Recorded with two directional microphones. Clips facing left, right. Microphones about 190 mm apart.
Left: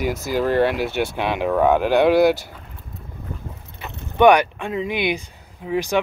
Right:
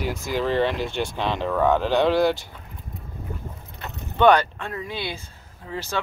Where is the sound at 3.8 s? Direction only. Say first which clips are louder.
Left 4 dB; 15° left (ahead or behind).